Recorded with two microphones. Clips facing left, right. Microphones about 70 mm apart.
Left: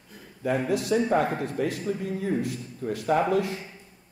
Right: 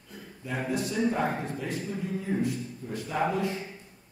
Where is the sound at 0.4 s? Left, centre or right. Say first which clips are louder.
Left 6 dB; left.